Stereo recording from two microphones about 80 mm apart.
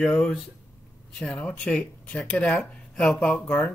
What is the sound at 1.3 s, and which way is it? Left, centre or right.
Speech, centre.